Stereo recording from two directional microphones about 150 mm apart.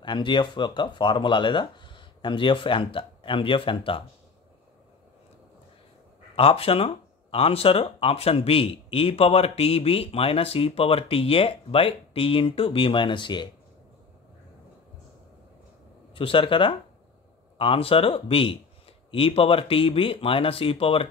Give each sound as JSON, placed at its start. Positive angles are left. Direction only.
{"t": 0.0, "sound": "speech", "side_deg": 30}
{"t": 6.3, "sound": "speech", "side_deg": 40}
{"t": 16.2, "sound": "speech", "side_deg": 35}